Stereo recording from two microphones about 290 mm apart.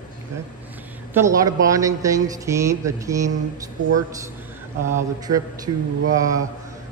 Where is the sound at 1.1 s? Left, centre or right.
Centre.